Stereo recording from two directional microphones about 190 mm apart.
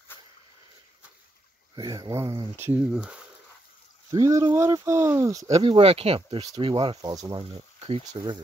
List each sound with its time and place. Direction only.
1.8 s speech: 20° right (ahead or behind); by 3.2 s 5° right (ahead or behind)
4.1 s speech: 15° right (ahead or behind)
5.6 s speech: 30° right (ahead or behind)
7.8 s speech: 30° right (ahead or behind)